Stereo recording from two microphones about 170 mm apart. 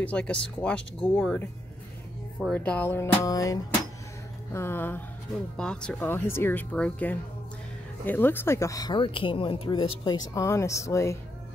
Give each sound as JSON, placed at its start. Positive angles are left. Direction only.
{"t": 0.0, "sound": "speech", "side_deg": 5}
{"t": 2.5, "sound": "speech", "side_deg": 10}